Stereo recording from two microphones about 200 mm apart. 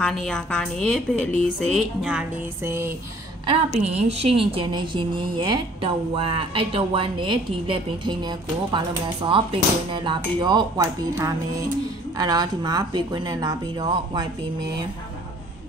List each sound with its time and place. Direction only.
0.0 s speech: 5° left (ahead or behind)
2.0 s music: 10° right (ahead or behind)
3.4 s speech: 30° right (ahead or behind)